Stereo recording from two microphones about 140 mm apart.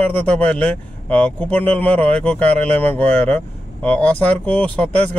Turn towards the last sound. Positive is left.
turn(degrees=10)  # may be behind; listen again after turning